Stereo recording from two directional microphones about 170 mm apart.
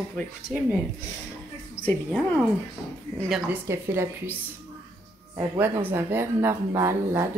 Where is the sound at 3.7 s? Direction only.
15° right (ahead or behind).